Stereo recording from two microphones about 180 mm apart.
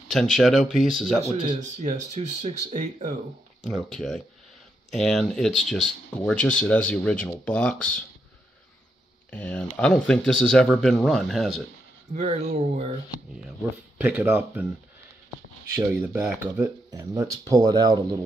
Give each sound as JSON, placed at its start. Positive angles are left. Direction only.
{"t": 0.1, "sound": "speech", "side_deg": 0}
{"t": 1.3, "sound": "speech", "side_deg": -30}
{"t": 1.6, "sound": "speech", "side_deg": -45}
{"t": 3.6, "sound": "speech", "side_deg": 0}
{"t": 9.3, "sound": "speech", "side_deg": 10}
{"t": 12.1, "sound": "speech", "side_deg": -35}
{"t": 13.9, "sound": "speech", "side_deg": -10}
{"t": 15.7, "sound": "speech", "side_deg": -10}